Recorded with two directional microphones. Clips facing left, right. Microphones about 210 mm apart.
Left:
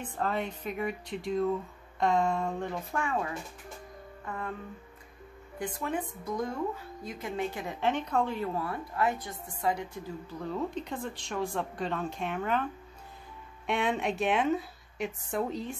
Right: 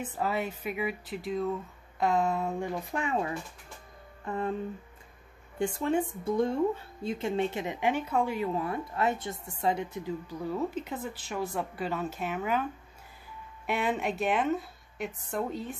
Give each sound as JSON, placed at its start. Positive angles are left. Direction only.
{"t": 0.0, "sound": "speech", "side_deg": -5}
{"t": 2.9, "sound": "speech", "side_deg": -20}
{"t": 5.6, "sound": "speech", "side_deg": -25}
{"t": 10.4, "sound": "speech", "side_deg": -5}
{"t": 13.7, "sound": "speech", "side_deg": -5}